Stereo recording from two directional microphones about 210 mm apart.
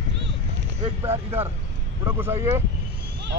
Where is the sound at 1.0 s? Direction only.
10° right (ahead or behind).